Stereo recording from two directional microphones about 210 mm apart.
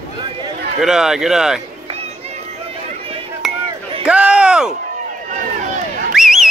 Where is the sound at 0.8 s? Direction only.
Centre (ahead or behind).